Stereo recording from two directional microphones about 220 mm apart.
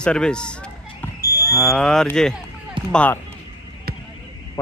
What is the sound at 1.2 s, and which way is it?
Fire alarm, 10° right (ahead or behind).